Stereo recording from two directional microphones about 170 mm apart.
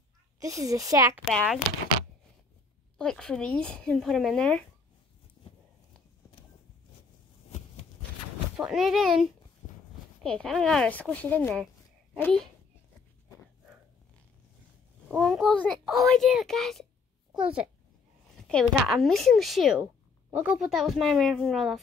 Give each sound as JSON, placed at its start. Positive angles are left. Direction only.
{"t": 0.4, "sound": "a woman's voice", "side_deg": -20}
{"t": 3.0, "sound": "a child's voice", "side_deg": 5}
{"t": 8.5, "sound": "a child's voice", "side_deg": -5}
{"t": 15.0, "sound": "a child's voice", "side_deg": 0}